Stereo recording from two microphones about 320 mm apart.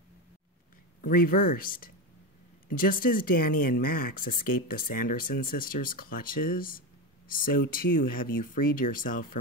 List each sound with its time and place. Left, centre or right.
1.0 s speech: left